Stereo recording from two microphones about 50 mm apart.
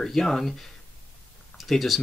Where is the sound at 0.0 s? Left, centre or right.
Centre.